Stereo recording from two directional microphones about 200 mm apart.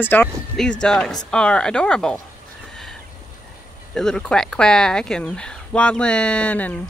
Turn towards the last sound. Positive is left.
turn(degrees=5)  # may be behind; listen again after turning